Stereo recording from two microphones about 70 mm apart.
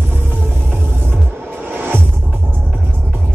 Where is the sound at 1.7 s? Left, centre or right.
Right.